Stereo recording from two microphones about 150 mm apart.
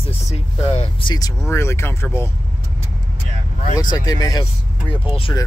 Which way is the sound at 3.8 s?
25° left (ahead or behind).